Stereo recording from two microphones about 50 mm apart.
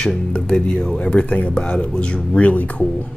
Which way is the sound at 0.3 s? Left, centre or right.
Centre.